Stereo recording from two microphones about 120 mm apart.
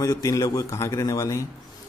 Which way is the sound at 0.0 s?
30° left (ahead or behind).